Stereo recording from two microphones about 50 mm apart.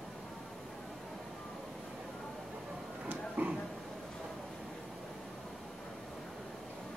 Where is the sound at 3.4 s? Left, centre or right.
Right.